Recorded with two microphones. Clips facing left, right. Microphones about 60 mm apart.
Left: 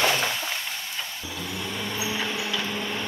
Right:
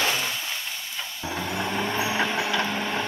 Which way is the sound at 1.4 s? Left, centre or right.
Right.